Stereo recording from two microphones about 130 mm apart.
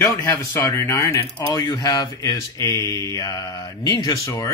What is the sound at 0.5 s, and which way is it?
Speech, 15° left (ahead or behind).